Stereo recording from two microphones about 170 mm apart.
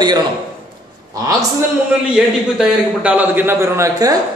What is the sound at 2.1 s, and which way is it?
A man's voice, 5° right (ahead or behind).